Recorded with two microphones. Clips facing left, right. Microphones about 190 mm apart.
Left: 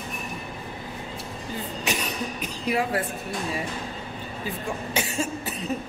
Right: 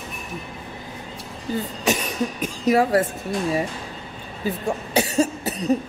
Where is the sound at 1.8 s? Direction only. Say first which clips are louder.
Right 6 dB; 45° right (ahead or behind).